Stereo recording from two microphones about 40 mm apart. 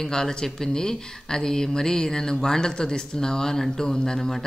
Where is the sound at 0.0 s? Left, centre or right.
Centre.